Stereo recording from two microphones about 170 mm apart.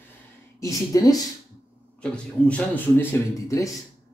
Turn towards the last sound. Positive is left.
turn(degrees=20)  # may be behind; listen again after turning